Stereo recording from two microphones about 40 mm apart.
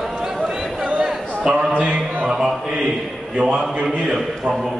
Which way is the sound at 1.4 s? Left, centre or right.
Right.